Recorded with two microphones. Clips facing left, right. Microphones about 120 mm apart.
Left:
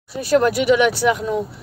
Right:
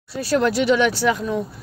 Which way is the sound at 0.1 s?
15° left (ahead or behind).